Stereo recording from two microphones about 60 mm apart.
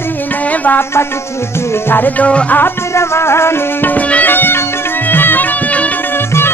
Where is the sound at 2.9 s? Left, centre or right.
Left.